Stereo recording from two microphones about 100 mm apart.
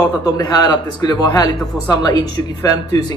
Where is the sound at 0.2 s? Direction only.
40° left (ahead or behind).